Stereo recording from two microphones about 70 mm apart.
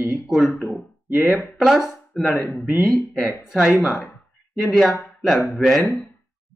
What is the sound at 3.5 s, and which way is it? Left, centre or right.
Speech, centre.